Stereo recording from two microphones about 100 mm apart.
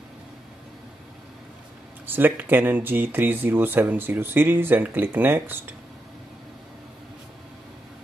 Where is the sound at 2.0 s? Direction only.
20° right (ahead or behind).